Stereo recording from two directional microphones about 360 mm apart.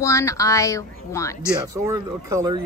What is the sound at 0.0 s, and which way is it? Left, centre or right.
Speech, centre.